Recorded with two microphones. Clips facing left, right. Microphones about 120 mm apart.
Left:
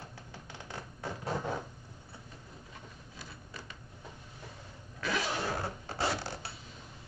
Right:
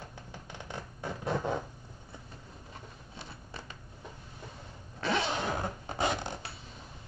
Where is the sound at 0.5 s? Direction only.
20° right (ahead or behind).